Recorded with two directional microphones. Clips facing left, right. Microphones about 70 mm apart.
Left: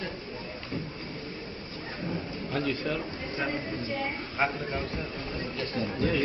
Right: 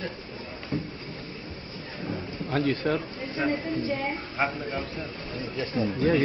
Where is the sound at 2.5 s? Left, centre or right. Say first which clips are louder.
Right 5 dB; right.